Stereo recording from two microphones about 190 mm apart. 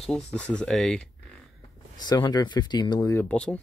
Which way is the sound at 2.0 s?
20° left (ahead or behind).